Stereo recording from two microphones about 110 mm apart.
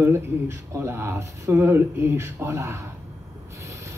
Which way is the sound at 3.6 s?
25° right (ahead or behind).